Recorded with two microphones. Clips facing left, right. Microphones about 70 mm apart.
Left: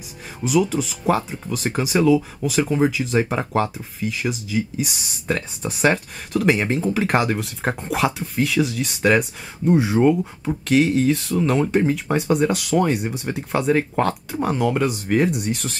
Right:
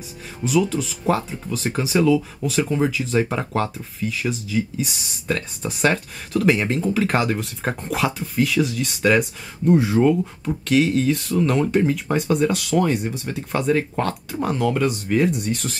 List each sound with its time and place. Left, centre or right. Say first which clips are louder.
0.5 s speech: left 1 dB; centre
12.8 s speech: left 1 dB; centre
14.3 s speech: left 1 dB; centre